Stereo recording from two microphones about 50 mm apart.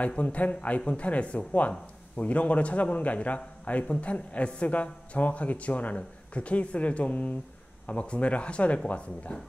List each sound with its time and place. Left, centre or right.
0.0 s a man's voice: left